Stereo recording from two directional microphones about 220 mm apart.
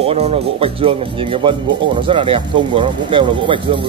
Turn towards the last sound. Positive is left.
turn(degrees=-20)  # may be behind; listen again after turning